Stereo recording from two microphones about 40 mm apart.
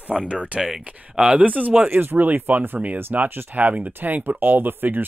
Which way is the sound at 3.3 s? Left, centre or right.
Right.